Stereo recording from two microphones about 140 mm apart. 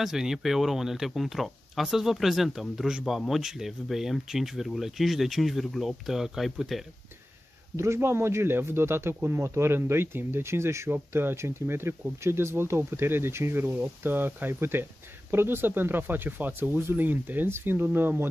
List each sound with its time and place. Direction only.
0.0 s speech: 5° right (ahead or behind)
7.7 s a man's voice: 20° right (ahead or behind)